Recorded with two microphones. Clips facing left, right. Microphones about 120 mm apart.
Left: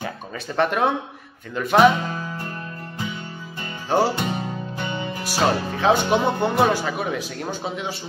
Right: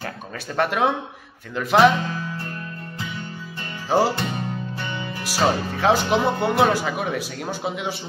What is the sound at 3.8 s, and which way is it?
Music, 10° right (ahead or behind).